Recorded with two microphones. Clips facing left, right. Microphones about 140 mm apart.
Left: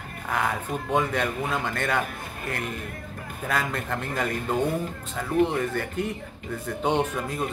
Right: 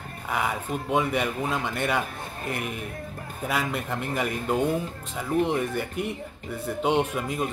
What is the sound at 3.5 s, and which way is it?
A man's voice, 5° right (ahead or behind).